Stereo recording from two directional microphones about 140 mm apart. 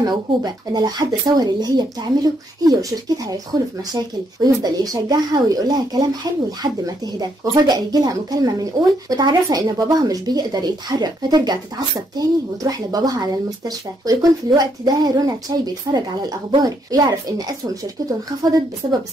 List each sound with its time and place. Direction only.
0.0 s speech: 30° right (ahead or behind)
7.2 s speech: 30° right (ahead or behind)